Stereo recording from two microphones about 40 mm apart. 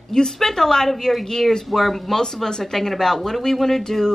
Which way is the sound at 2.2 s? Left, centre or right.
Centre.